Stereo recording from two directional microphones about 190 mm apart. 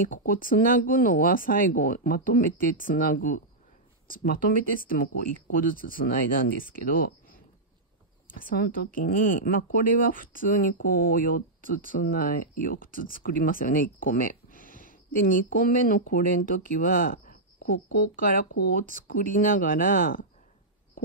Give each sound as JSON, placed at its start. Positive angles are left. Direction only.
{"t": 0.0, "sound": "speech", "side_deg": 45}